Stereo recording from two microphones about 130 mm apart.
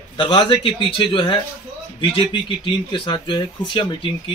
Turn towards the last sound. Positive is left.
turn(degrees=40)  # may be behind; listen again after turning